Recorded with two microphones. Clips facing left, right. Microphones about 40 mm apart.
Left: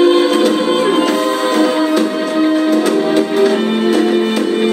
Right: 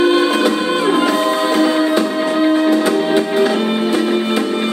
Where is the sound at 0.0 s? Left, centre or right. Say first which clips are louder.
Left 3 dB; centre.